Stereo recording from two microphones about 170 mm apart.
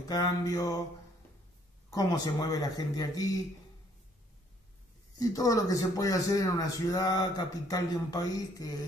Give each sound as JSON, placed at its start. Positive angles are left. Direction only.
{"t": 0.1, "sound": "a man's voice", "side_deg": 20}
{"t": 1.9, "sound": "a man's voice", "side_deg": 20}
{"t": 5.2, "sound": "a man's voice", "side_deg": 20}